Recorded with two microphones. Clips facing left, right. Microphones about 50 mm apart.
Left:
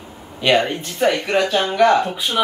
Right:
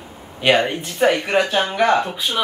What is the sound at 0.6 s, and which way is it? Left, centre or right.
Speech, centre.